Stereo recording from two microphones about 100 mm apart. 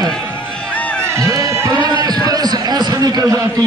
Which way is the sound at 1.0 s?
30° right (ahead or behind).